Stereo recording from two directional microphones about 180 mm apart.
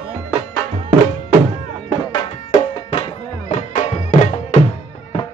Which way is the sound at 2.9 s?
35° left (ahead or behind).